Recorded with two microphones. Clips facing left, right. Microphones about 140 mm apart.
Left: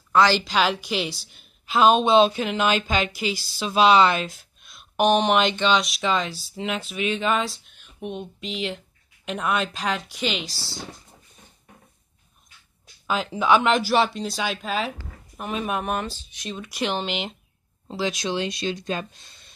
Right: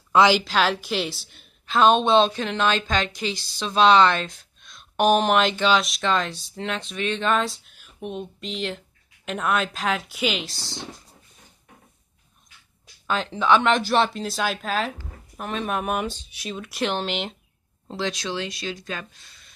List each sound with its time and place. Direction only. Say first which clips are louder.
0.4 s a woman's voice: even; centre (ahead or behind)
13.0 s a woman's voice: even; 5° left (ahead or behind); by 19.5 s 25° left (ahead or behind)